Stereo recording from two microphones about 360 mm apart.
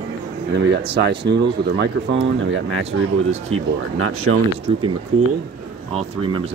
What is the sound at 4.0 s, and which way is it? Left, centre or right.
Speech, right.